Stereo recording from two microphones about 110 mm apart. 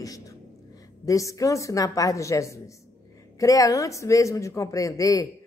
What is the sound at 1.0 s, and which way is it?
A woman's voice, 30° left (ahead or behind).